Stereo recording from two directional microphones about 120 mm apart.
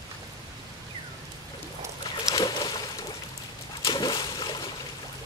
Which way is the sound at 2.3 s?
35° left (ahead or behind).